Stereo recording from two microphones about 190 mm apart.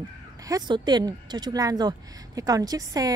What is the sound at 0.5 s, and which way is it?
Speech, 20° right (ahead or behind).